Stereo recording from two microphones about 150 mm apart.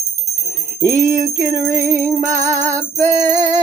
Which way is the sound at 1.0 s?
20° right (ahead or behind).